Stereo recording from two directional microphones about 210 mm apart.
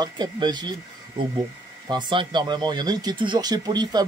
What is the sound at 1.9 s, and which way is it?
Speech, 20° right (ahead or behind).